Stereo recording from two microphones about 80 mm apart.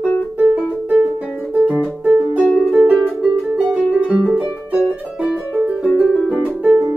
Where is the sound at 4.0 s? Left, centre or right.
Centre.